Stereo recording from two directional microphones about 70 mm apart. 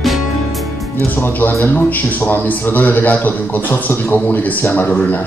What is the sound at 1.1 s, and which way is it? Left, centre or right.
A man's voice, left.